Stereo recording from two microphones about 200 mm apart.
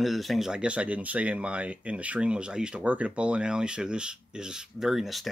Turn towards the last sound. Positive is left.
turn(degrees=0)  # may be behind; listen again after turning